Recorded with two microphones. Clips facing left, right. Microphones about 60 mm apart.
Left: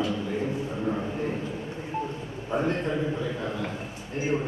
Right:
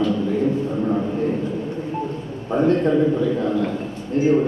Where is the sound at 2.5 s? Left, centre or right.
Right.